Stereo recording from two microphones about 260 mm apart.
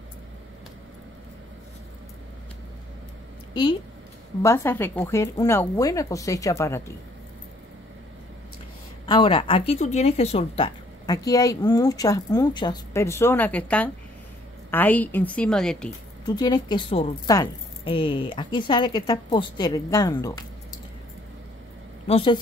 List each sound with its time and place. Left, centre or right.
4.4 s speech: centre
9.0 s a woman's voice: centre
16.3 s speech: centre
22.0 s a woman's voice: left